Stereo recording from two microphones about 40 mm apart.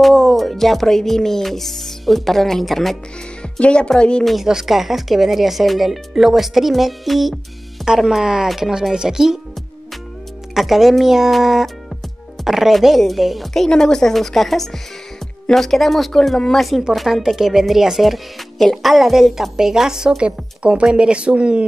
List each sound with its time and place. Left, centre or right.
0.0 s music: centre
3.5 s speech: left
4.2 s music: centre
7.8 s a woman's voice: centre
10.5 s music: centre
13.7 s speech: centre
14.1 s music: centre
16.1 s speech: centre
16.9 s music: centre
17.4 s a woman's voice: centre
18.8 s music: centre
19.5 s a woman's voice: centre
20.2 s speech: right